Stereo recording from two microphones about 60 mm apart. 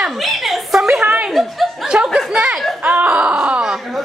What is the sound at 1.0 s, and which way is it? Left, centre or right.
Chuckle, right.